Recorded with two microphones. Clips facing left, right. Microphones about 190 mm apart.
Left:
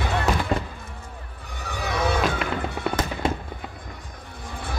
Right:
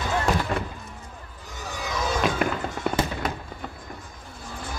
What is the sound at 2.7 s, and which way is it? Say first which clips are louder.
Fireworks: even; 60° left (ahead or behind).